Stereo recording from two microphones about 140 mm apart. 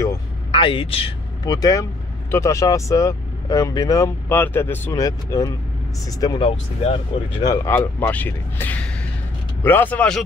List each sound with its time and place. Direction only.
0.5 s a man's voice: 35° left (ahead or behind)
1.4 s speech: 25° left (ahead or behind)
5.0 s speech: 25° left (ahead or behind)
6.4 s speech: 45° left (ahead or behind)
7.4 s speech: 20° left (ahead or behind)